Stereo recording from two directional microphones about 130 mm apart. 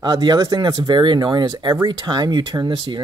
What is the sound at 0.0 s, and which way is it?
Speech, 35° right (ahead or behind).